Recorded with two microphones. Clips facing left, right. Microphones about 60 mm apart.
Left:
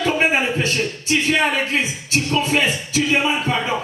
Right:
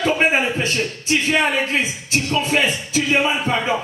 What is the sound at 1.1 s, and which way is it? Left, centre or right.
Speech, centre.